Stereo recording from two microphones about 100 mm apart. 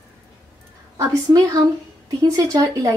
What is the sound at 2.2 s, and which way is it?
Speech, 40° right (ahead or behind).